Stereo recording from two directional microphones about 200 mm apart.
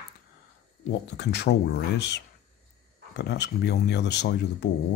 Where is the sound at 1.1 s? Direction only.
60° left (ahead or behind).